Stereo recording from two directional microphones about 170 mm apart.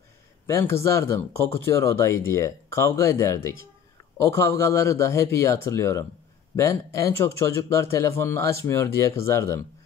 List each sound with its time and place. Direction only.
0.5 s speech: 15° left (ahead or behind)